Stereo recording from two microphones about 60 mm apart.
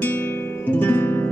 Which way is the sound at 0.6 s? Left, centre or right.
Left.